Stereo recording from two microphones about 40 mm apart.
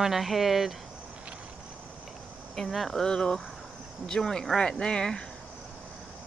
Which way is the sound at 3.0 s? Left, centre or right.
Centre.